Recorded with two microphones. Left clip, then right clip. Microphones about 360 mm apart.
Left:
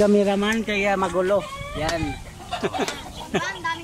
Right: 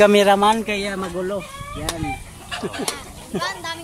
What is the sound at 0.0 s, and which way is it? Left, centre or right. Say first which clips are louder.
Speech: right 6 dB; right.